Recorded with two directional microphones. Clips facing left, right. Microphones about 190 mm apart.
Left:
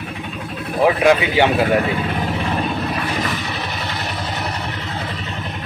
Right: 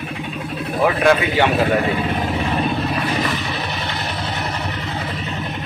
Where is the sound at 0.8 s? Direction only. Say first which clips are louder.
Left 2 dB; 15° left (ahead or behind).